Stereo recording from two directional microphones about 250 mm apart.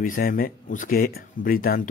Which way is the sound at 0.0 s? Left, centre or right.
Left.